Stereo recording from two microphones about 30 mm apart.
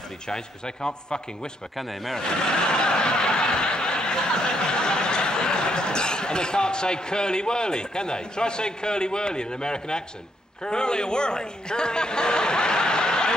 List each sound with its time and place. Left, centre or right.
0.3 s a man's voice: left
1.8 s speech: centre
2.7 s snicker: left
10.6 s a man's voice: left